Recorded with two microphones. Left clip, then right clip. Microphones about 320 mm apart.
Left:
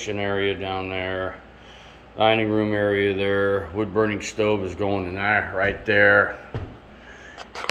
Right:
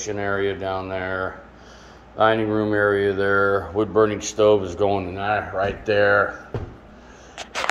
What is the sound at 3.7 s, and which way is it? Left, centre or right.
Speech, centre.